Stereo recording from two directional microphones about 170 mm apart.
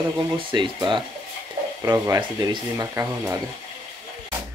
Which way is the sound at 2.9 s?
15° right (ahead or behind).